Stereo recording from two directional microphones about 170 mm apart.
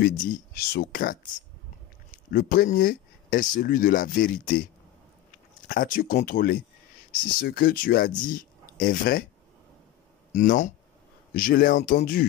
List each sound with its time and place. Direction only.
0.3 s speech: 65° left (ahead or behind)
5.7 s speech: 55° left (ahead or behind)
10.3 s speech: 50° left (ahead or behind)